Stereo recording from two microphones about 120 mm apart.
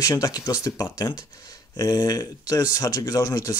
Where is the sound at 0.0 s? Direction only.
30° left (ahead or behind).